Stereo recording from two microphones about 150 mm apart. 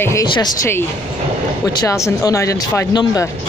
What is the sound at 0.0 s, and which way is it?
Speech, 20° left (ahead or behind).